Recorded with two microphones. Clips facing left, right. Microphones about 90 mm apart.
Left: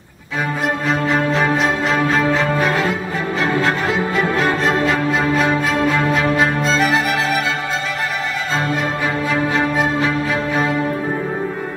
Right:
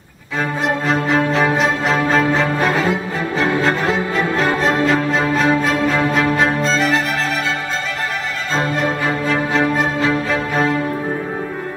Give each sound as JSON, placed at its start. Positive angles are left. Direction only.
{"t": 0.8, "sound": "music", "side_deg": 0}
{"t": 9.3, "sound": "music", "side_deg": 5}